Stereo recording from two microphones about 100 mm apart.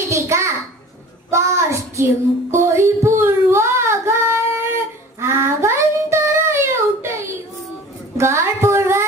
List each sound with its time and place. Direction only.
0.1 s a sound: 30° right (ahead or behind)
1.3 s child singing: 30° right (ahead or behind)
8.2 s music: 30° right (ahead or behind)